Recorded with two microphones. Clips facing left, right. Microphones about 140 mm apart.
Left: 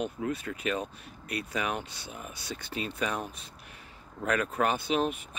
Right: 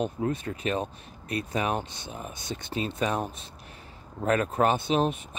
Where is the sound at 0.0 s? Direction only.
30° right (ahead or behind).